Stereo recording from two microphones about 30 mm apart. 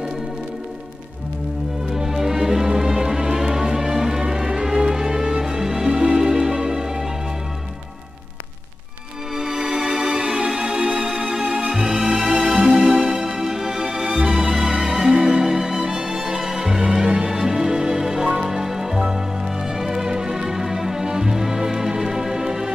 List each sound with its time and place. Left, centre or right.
2.0 s music: centre
9.4 s music: right
11.4 s music: right
11.7 s music: right
14.6 s music: right
14.9 s music: centre